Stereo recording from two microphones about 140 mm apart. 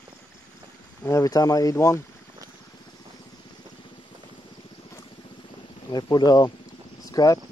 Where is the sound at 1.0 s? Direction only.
20° left (ahead or behind).